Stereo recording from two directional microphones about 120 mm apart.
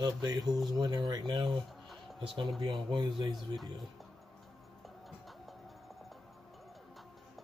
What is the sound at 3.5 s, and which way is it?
Speech, centre (ahead or behind).